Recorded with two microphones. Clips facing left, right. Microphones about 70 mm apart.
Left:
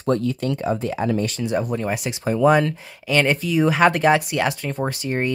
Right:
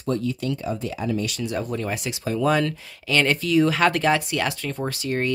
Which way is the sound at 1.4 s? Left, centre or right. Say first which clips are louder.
Left 4 dB; left.